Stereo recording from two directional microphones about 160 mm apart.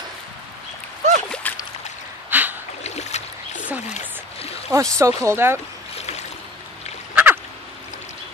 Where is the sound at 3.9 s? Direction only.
40° left (ahead or behind).